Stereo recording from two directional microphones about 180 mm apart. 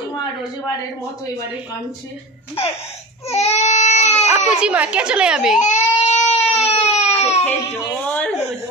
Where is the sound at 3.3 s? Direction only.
40° left (ahead or behind).